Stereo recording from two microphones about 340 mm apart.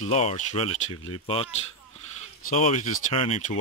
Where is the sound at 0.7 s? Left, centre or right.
Left.